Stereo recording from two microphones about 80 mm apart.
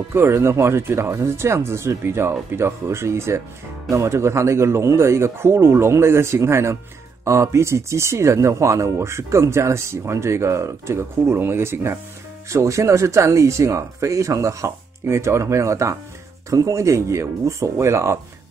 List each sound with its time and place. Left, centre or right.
0.1 s speech: right